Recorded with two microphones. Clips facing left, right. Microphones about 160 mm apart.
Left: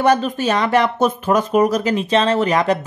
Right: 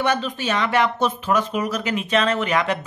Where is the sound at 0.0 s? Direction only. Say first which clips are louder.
Left 6 dB; 40° left (ahead or behind).